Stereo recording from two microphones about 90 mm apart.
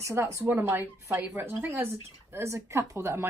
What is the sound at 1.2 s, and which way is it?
Speech, 20° right (ahead or behind).